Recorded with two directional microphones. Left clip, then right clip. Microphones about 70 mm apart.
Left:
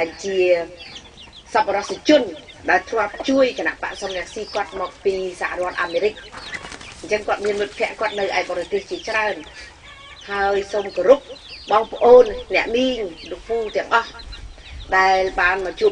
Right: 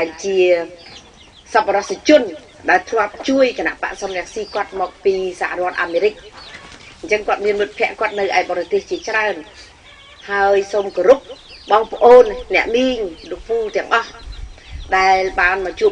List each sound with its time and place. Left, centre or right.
0.0 s a man's voice: right
7.1 s a man's voice: right
12.2 s a man's voice: right
13.3 s speech: centre
13.7 s a man's voice: right